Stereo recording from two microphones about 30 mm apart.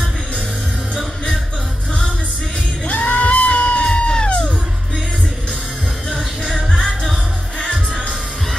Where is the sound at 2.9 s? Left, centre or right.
Left.